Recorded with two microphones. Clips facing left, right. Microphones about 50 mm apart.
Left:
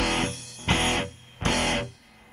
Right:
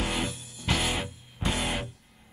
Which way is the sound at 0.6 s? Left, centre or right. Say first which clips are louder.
Left 4 dB; left.